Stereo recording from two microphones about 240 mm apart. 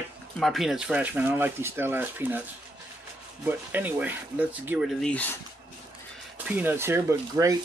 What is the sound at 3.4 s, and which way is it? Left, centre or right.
Speech, centre.